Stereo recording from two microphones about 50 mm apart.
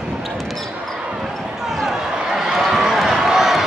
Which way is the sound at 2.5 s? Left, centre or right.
Centre.